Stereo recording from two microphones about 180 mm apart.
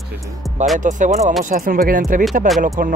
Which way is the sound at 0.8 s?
45° right (ahead or behind).